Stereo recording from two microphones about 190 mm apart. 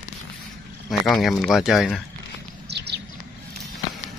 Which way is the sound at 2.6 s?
60° right (ahead or behind).